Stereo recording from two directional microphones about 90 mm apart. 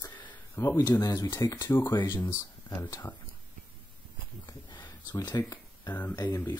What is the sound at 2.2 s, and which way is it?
Speech, 40° left (ahead or behind).